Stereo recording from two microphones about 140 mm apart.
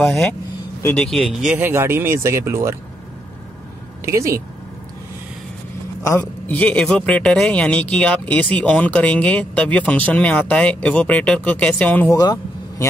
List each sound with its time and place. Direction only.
0.8 s speech: 5° left (ahead or behind)
1.5 s speech: 15° right (ahead or behind)
4.0 s speech: 20° right (ahead or behind)
6.4 s speech: 10° left (ahead or behind)
12.2 s vehicle: 25° left (ahead or behind)